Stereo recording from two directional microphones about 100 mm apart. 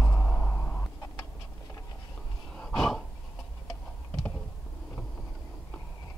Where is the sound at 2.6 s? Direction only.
5° left (ahead or behind).